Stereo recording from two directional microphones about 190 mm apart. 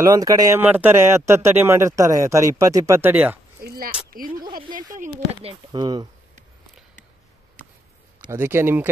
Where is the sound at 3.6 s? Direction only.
50° right (ahead or behind).